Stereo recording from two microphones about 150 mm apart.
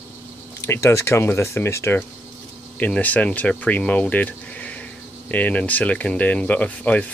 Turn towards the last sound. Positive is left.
turn(degrees=10)  # may be behind; listen again after turning